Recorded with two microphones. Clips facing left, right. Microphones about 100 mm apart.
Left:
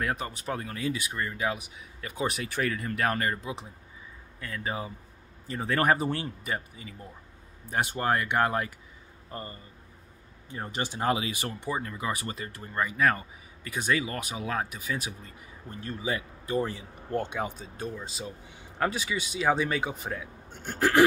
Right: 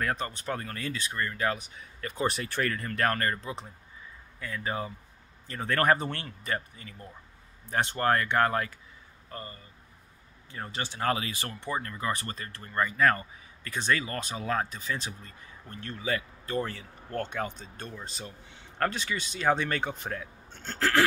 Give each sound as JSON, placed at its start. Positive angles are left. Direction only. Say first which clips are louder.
{"t": 0.0, "sound": "speech", "louder": "even", "side_deg": 5}
{"t": 4.6, "sound": "speech", "louder": "right 1 dB", "side_deg": 5}
{"t": 9.3, "sound": "speech", "louder": "left 2 dB", "side_deg": 30}
{"t": 10.5, "sound": "speech", "louder": "left 3 dB", "side_deg": 20}